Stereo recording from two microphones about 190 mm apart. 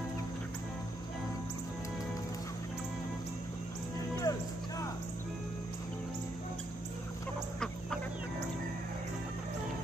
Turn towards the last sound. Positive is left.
turn(degrees=5)  # may be behind; listen again after turning